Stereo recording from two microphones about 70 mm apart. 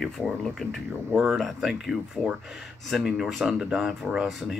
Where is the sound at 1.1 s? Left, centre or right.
Centre.